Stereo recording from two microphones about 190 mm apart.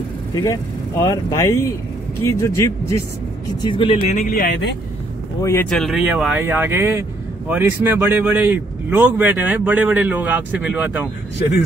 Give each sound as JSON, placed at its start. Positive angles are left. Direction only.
{"t": 0.3, "sound": "speech", "side_deg": 20}
{"t": 3.7, "sound": "speech", "side_deg": 30}
{"t": 4.2, "sound": "speech", "side_deg": 45}
{"t": 5.4, "sound": "speech", "side_deg": 15}
{"t": 5.7, "sound": "speech", "side_deg": 0}